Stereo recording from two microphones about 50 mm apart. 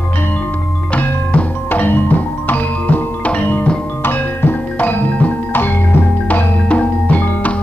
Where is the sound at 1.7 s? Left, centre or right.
Left.